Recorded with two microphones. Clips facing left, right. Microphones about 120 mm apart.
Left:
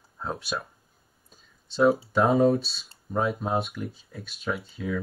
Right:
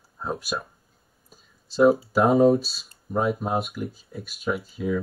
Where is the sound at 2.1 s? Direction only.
Centre (ahead or behind).